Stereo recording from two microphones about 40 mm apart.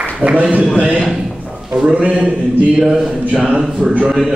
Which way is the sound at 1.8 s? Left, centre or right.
Right.